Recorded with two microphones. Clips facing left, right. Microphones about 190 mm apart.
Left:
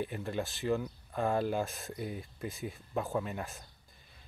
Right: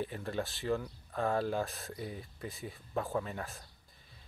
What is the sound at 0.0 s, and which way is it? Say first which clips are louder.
Speech: left 1 dB; 5° left (ahead or behind).